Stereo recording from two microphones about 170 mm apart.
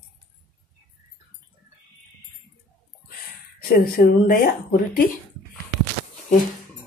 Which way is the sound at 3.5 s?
60° left (ahead or behind).